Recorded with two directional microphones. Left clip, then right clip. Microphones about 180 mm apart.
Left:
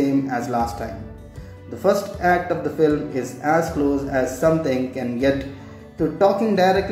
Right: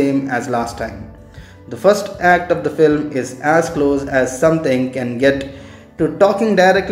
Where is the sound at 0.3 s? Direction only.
15° right (ahead or behind).